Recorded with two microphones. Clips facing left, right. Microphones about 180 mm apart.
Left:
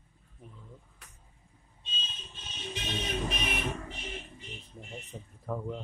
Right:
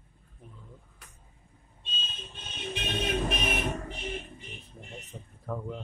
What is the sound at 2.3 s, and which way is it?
Vehicle, 60° right (ahead or behind).